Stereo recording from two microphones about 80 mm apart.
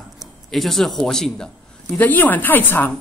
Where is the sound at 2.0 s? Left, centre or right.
Left.